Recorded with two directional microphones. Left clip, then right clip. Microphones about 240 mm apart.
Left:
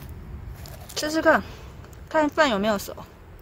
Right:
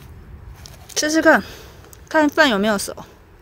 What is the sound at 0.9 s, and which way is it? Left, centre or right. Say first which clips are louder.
A woman's voice: right 6 dB; right.